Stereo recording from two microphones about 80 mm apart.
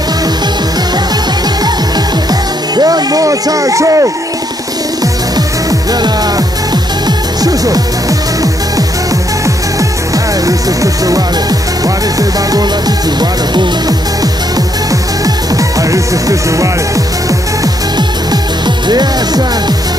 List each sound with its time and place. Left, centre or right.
2.7 s speech: right
5.7 s music: right
9.8 s music: right
11.8 s speech: right
14.9 s music: right
18.9 s speech: right